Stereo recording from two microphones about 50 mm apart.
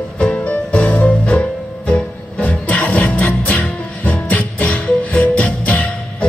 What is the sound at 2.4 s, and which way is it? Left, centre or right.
Music, left.